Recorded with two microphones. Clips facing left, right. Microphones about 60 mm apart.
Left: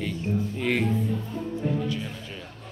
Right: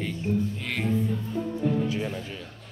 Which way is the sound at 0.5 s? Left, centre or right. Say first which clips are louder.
Left 7 dB; centre.